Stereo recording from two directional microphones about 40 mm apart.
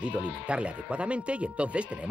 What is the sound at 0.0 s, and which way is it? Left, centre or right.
Speech, right.